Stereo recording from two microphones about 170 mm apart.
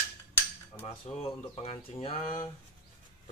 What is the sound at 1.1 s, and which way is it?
Speech, 35° left (ahead or behind).